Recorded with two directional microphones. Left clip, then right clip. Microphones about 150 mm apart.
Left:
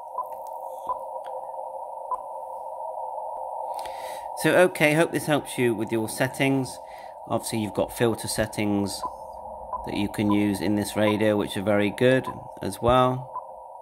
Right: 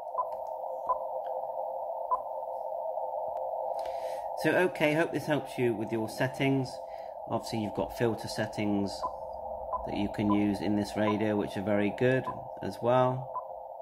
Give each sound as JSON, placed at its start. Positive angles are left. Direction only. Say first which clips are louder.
{"t": 4.4, "sound": "speech", "louder": "left 8 dB", "side_deg": 65}